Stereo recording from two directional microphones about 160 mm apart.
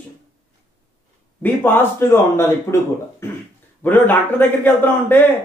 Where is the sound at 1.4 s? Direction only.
15° left (ahead or behind).